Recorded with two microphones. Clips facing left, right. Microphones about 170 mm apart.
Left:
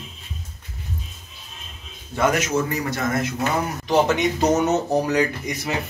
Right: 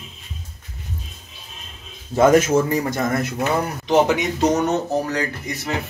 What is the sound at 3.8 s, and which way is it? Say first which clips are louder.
Speech: right 2 dB; 20° right (ahead or behind).